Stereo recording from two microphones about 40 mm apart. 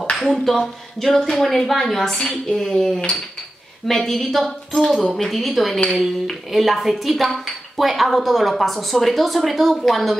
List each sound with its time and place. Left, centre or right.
0.3 s a woman's voice: centre